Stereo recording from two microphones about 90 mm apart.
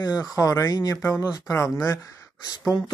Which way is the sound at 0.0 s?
45° left (ahead or behind).